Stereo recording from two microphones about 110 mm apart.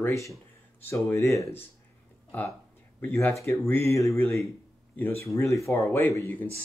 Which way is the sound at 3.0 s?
20° left (ahead or behind).